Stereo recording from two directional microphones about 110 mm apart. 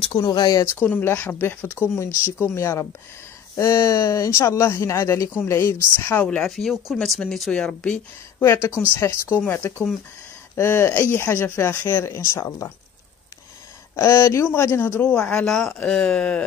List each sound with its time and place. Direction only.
0.0 s speech: 45° left (ahead or behind)
0.8 s speech: 20° left (ahead or behind)
8.4 s speech: 25° left (ahead or behind)
13.9 s speech: 30° left (ahead or behind); by 16.4 s 10° left (ahead or behind)